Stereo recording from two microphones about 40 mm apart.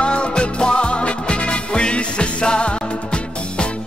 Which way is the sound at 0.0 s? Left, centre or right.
Left.